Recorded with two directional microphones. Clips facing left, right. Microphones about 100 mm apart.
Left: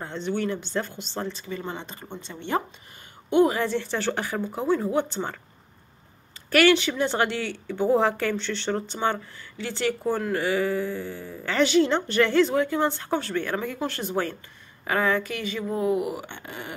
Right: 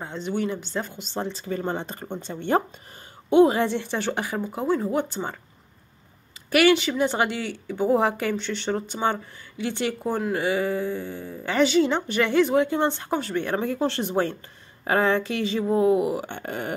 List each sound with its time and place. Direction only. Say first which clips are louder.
0.0 s a woman's voice: even; 10° right (ahead or behind)
1.3 s speech: right 5 dB; 40° right (ahead or behind)
3.3 s a woman's voice: right 3 dB; 25° right (ahead or behind); by 5.4 s 10° right (ahead or behind)
6.5 s a woman's voice: right 1 dB; 10° right (ahead or behind)
11.6 s speech: even; 5° right (ahead or behind); by 16.7 s 45° right (ahead or behind)